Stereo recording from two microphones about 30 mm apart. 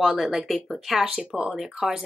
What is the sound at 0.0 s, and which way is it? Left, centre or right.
Speech, centre.